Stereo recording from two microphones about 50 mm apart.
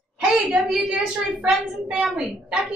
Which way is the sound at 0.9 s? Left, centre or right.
Centre.